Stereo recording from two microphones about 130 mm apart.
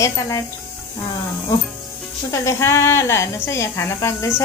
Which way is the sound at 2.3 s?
25° left (ahead or behind).